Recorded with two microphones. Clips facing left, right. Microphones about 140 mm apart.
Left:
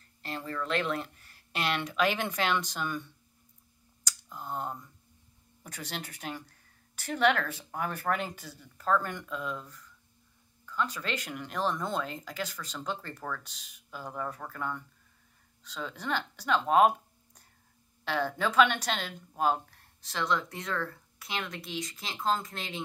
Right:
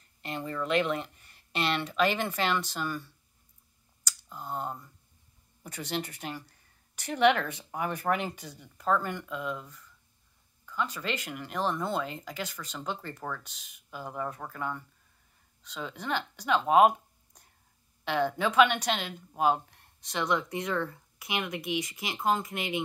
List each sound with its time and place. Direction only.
0.2 s a sound: centre (ahead or behind)
1.9 s speech: 5° left (ahead or behind)
4.0 s clicking: 10° right (ahead or behind)
5.9 s speech: centre (ahead or behind)
6.3 s speech: 10° right (ahead or behind)
10.6 s a sound: 10° right (ahead or behind)
11.0 s speech: 10° right (ahead or behind)
20.7 s speech: 20° right (ahead or behind)